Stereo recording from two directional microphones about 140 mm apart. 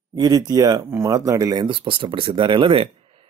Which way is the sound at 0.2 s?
25° right (ahead or behind).